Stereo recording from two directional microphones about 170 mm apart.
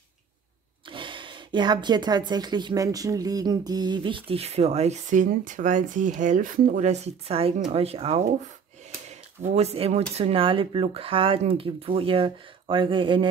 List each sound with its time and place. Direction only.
0.8 s a woman's voice: 30° right (ahead or behind)
9.4 s speech: 40° right (ahead or behind)